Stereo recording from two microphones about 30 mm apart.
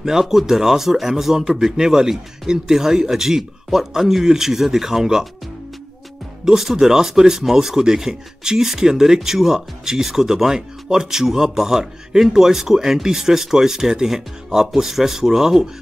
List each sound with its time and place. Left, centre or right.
0.0 s a man's voice: centre
6.4 s speech: centre